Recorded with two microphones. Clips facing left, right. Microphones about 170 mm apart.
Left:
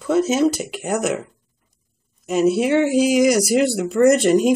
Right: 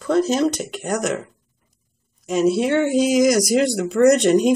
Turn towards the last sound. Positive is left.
turn(degrees=5)  # may be behind; listen again after turning